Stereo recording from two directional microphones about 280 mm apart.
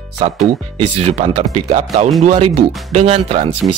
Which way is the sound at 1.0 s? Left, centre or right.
Right.